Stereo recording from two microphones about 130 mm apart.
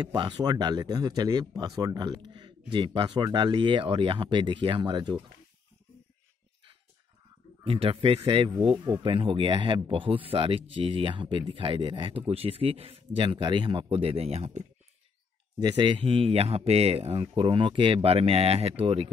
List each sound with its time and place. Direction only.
0.0 s speech: 35° right (ahead or behind)
7.6 s speech: 45° right (ahead or behind)
15.6 s speech: 35° right (ahead or behind)